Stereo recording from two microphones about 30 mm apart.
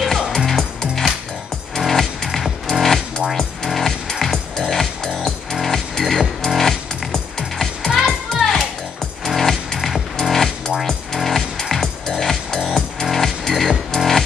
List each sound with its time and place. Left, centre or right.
0.4 s music: centre
7.9 s music: centre
9.4 s music: centre
9.8 s music: centre